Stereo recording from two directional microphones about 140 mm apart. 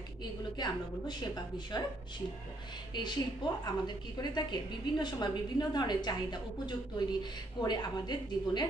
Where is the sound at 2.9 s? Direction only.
30° left (ahead or behind).